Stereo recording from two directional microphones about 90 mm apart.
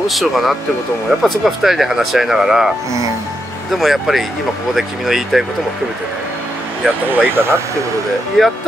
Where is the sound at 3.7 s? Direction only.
Centre (ahead or behind).